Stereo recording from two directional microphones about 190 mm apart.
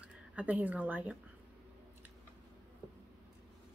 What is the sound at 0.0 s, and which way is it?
A woman's voice, 10° right (ahead or behind).